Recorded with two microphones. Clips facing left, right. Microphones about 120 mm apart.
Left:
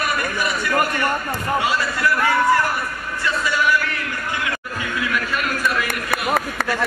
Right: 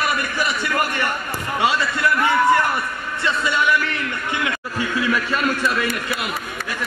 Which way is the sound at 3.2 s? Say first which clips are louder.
Even; 25° right (ahead or behind).